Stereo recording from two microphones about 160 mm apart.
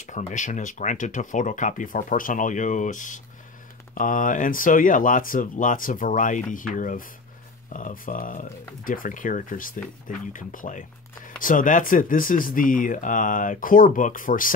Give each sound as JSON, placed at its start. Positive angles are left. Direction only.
{"t": 0.0, "sound": "speech", "side_deg": 50}